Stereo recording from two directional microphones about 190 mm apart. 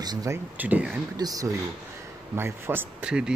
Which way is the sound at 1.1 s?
20° right (ahead or behind).